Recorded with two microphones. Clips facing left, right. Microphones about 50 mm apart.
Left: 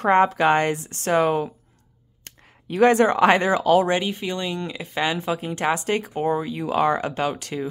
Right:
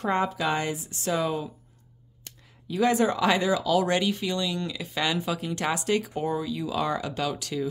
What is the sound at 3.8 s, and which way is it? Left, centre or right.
A woman's voice, left.